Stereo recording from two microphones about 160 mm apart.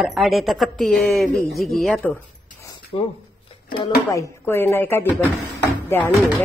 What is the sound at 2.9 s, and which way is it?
Speech, 35° left (ahead or behind).